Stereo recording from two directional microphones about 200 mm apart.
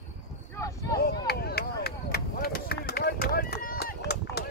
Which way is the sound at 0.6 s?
15° left (ahead or behind).